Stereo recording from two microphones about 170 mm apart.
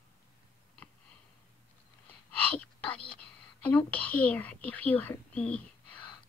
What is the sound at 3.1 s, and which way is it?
Speech, 10° left (ahead or behind).